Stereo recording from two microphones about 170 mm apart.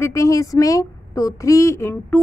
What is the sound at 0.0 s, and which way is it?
A woman's voice, 20° left (ahead or behind).